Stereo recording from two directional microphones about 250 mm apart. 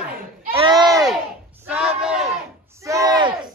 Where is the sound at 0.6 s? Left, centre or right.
Centre.